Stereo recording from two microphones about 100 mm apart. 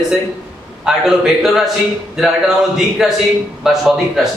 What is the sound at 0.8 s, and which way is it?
A man's voice, 5° right (ahead or behind).